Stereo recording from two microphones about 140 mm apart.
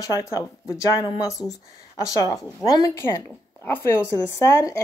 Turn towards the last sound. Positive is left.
turn(degrees=20)  # may be behind; listen again after turning